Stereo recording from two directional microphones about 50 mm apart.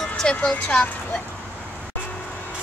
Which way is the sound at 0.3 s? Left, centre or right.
Left.